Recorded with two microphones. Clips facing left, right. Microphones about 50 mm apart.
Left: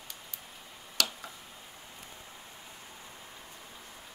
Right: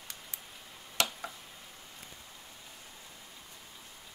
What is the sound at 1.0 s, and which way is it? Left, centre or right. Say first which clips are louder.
Tick: right 1 dB; right.